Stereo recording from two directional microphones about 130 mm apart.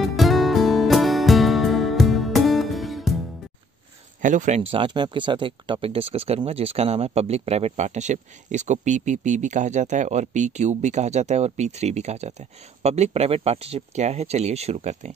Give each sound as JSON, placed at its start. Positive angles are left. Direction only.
{"t": 0.0, "sound": "music", "side_deg": 0}
{"t": 4.2, "sound": "speech", "side_deg": -70}
{"t": 4.6, "sound": "speech", "side_deg": -45}